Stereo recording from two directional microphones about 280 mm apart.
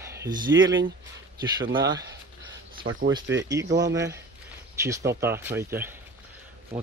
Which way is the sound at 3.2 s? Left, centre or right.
Right.